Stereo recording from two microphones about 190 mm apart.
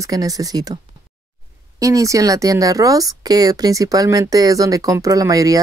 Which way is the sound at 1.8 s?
15° right (ahead or behind).